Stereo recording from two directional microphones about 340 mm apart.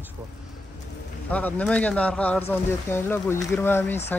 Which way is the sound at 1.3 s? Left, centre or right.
Centre.